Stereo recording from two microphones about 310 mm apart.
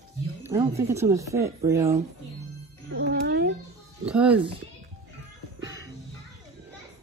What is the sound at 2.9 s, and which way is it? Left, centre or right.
Music, right.